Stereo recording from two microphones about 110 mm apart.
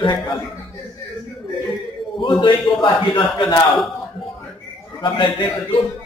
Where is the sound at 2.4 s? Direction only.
45° left (ahead or behind).